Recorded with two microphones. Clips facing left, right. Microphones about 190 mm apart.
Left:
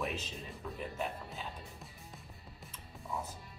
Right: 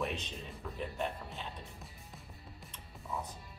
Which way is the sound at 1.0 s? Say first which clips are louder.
Right 1 dB; centre (ahead or behind).